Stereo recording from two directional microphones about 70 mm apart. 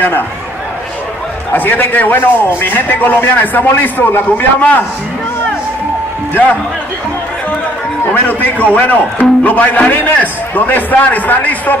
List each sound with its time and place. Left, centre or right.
1.5 s a man's voice: left
8.0 s a man's voice: left